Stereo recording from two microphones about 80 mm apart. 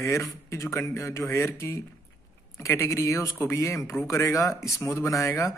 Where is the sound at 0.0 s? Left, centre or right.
Left.